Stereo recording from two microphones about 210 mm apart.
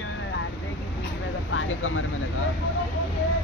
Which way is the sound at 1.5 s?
70° left (ahead or behind).